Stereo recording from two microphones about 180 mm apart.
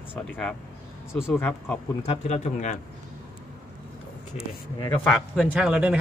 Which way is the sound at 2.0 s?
35° left (ahead or behind).